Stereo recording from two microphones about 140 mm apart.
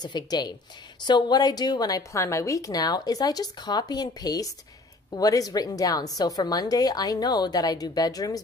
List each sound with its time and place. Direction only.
0.0 s a woman's voice: 30° left (ahead or behind)